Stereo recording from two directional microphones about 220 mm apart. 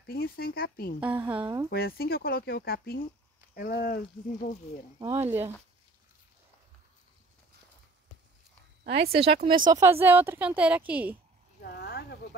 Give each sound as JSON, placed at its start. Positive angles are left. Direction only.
{"t": 0.0, "sound": "speech", "side_deg": 45}
{"t": 1.0, "sound": "a woman's voice", "side_deg": -5}
{"t": 1.7, "sound": "speech", "side_deg": 45}
{"t": 4.9, "sound": "speech", "side_deg": -20}
{"t": 5.2, "sound": "a woman's voice", "side_deg": -10}
{"t": 8.8, "sound": "speech", "side_deg": -45}
{"t": 9.2, "sound": "speech", "side_deg": -25}
{"t": 9.7, "sound": "a woman's voice", "side_deg": -15}
{"t": 11.6, "sound": "speech", "side_deg": 45}